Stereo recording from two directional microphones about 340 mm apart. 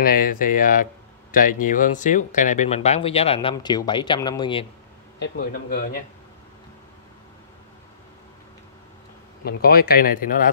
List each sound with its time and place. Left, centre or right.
0.0 s speech: left
5.2 s speech: left
9.4 s speech: left